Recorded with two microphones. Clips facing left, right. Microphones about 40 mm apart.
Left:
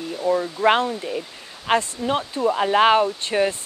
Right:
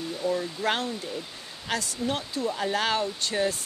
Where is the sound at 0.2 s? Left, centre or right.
Left.